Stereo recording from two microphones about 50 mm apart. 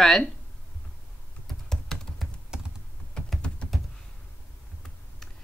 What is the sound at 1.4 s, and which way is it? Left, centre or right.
Computer keyboard, centre.